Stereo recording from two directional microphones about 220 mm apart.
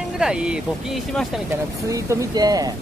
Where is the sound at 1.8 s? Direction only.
15° right (ahead or behind).